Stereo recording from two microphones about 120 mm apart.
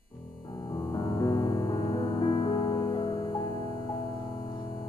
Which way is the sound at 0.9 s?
30° left (ahead or behind).